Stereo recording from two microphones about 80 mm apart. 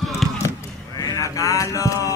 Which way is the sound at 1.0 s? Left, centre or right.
Left.